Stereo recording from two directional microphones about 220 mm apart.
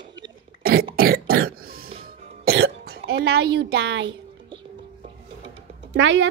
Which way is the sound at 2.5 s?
55° right (ahead or behind).